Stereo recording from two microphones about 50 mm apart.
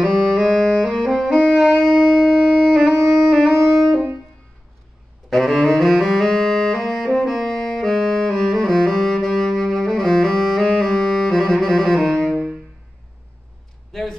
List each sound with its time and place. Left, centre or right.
0.0 s music: centre
1.1 s saxophone: centre
5.3 s music: centre
12.3 s music: centre